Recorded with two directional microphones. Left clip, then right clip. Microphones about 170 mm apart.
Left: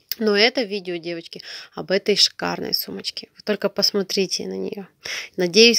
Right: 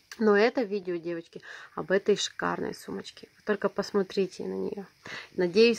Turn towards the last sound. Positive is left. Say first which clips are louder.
# left 6 dB
turn(degrees=35)  # may be behind; listen again after turning